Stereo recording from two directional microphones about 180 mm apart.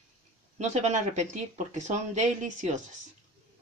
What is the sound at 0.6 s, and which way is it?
Speech, 40° right (ahead or behind).